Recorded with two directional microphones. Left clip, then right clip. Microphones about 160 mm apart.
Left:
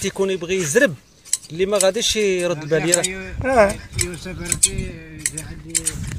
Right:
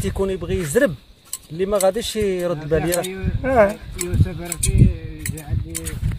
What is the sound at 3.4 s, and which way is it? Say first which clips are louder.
Speech: even; 15° right (ahead or behind).